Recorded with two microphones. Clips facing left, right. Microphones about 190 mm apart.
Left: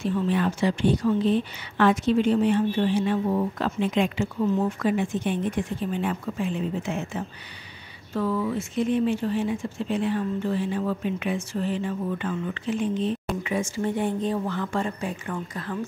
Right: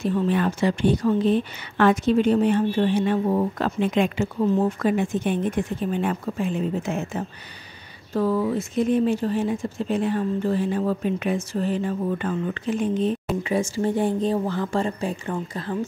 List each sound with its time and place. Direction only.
0.0 s speech: 50° right (ahead or behind)
4.6 s speech: 40° right (ahead or behind)
13.4 s speech: 35° right (ahead or behind)